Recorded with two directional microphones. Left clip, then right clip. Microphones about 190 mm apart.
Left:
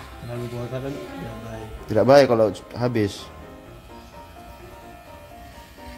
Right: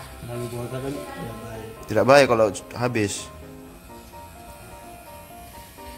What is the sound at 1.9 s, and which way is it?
A man's voice, 25° left (ahead or behind).